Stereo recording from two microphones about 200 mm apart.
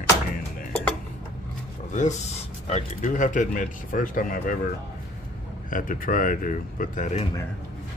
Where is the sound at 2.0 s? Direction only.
35° left (ahead or behind).